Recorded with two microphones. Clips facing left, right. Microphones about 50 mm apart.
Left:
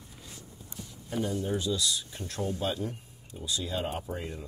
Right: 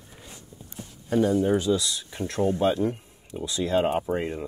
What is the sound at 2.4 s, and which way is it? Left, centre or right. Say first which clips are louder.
Speech: right 9 dB; right.